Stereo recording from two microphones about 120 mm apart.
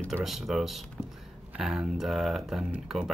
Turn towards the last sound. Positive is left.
turn(degrees=-5)  # may be behind; listen again after turning